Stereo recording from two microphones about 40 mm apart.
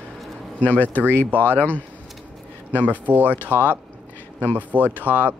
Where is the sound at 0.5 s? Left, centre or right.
Left.